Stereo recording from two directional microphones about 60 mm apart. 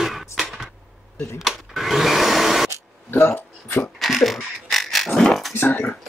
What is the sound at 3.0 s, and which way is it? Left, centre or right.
Speech, left.